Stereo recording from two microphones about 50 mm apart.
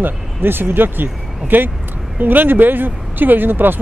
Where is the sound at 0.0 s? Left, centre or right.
Right.